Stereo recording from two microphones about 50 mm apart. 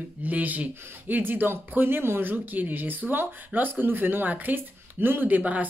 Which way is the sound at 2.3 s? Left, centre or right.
Right.